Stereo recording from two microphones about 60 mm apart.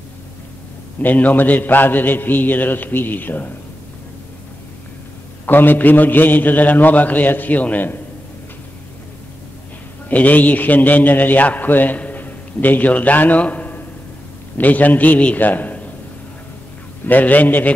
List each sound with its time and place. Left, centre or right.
1.0 s a man's voice: left
5.5 s a man's voice: left
10.0 s a man's voice: left
17.0 s a man's voice: left